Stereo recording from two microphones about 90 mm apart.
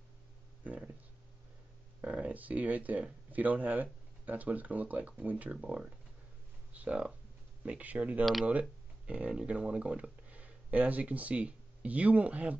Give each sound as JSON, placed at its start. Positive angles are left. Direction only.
{"t": 2.0, "sound": "speech", "side_deg": -15}